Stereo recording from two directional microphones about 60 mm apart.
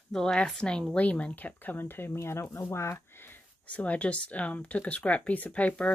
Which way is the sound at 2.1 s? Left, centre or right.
Left.